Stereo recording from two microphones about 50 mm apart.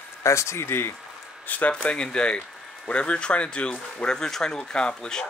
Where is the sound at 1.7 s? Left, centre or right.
Left.